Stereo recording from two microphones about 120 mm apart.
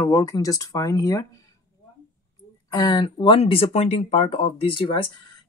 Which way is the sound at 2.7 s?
35° left (ahead or behind).